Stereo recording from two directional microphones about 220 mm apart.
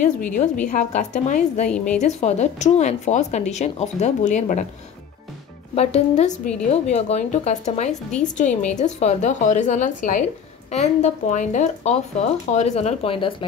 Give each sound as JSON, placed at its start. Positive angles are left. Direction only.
{"t": 0.0, "sound": "speech", "side_deg": 35}
{"t": 5.8, "sound": "speech", "side_deg": 30}